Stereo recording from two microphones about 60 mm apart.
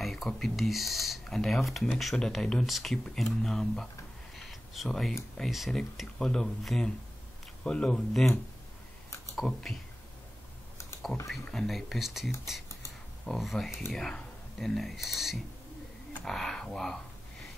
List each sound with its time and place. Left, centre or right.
0.0 s a sound: centre
0.3 s speech: centre
4.4 s a sound: centre
4.8 s speech: centre
9.3 s speech: centre
11.2 s speech: centre
16.3 s speech: centre